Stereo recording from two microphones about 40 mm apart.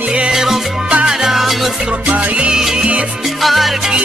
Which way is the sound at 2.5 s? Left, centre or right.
Centre.